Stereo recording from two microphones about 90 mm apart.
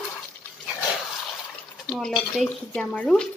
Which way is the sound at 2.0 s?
5° left (ahead or behind).